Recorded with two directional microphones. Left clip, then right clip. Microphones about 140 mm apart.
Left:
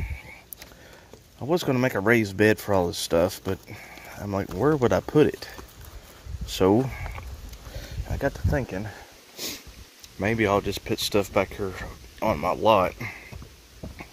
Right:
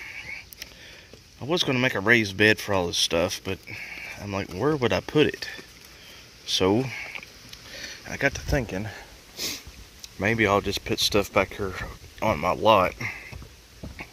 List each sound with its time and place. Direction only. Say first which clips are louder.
0.0 s a sound: right 6 dB; 15° left (ahead or behind)
1.7 s speech: right 1 dB; 25° left (ahead or behind)
3.6 s speech: right 6 dB; 15° left (ahead or behind)
4.8 s speech: left 1 dB; 30° left (ahead or behind)
6.6 s speech: left 4 dB; 15° left (ahead or behind)
8.2 s speech: right 2 dB; 30° right (ahead or behind)
9.4 s sniff: right 3 dB; 20° left (ahead or behind)
10.2 s speech: right 1 dB; 15° left (ahead or behind)